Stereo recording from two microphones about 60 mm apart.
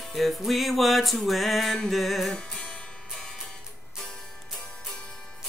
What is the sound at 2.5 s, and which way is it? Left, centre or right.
Music, left.